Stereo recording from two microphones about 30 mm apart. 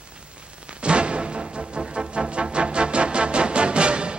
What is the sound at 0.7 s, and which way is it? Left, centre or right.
Music, right.